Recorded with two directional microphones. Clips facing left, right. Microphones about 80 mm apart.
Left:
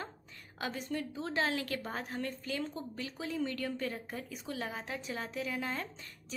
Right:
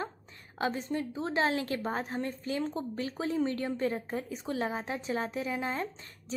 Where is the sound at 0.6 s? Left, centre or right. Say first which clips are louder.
Right 5 dB; right.